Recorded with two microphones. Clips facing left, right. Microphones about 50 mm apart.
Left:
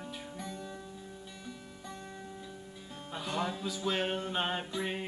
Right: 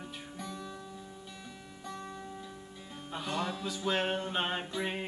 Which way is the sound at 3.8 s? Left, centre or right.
Centre.